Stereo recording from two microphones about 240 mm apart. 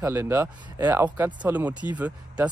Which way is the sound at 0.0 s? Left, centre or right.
Centre.